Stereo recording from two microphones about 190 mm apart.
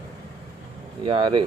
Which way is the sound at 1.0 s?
25° right (ahead or behind).